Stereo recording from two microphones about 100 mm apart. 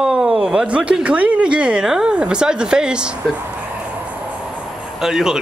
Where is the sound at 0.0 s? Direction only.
10° right (ahead or behind).